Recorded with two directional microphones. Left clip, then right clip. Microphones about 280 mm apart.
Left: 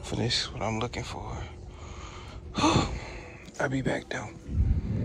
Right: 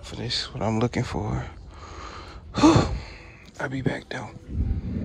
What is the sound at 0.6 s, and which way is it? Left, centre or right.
Speech, centre.